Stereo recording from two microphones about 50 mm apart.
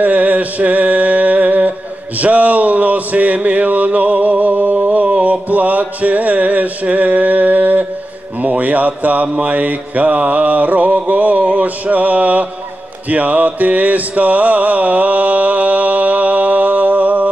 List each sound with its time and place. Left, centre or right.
0.0 s mantra: right
2.1 s a sound: right
8.4 s mantra: right